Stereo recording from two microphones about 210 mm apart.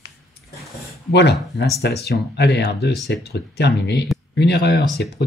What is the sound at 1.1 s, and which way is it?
Speech, 55° left (ahead or behind).